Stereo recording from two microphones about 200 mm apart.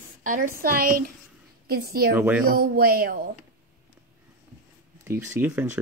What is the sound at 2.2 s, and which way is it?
Speech, 10° right (ahead or behind).